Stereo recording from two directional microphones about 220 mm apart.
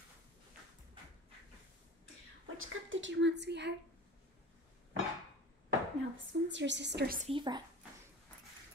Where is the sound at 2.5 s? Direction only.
65° right (ahead or behind).